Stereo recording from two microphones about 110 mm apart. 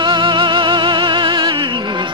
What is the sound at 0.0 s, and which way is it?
Music, 45° right (ahead or behind).